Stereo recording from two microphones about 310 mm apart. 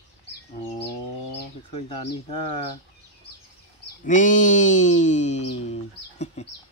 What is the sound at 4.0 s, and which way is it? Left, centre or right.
Speech, left.